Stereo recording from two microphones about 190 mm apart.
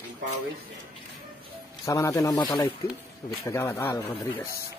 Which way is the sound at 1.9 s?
15° left (ahead or behind).